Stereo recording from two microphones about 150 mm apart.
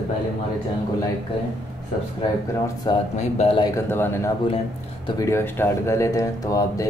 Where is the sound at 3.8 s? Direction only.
15° left (ahead or behind).